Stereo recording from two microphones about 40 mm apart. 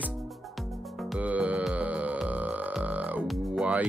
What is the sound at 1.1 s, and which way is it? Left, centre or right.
Music, right.